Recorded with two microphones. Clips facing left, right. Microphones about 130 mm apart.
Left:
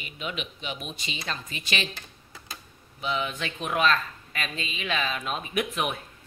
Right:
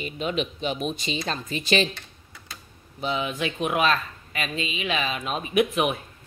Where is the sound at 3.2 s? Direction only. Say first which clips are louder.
Right 5 dB; 10° right (ahead or behind).